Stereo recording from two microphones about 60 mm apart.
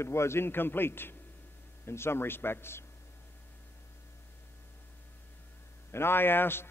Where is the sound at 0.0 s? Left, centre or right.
Left.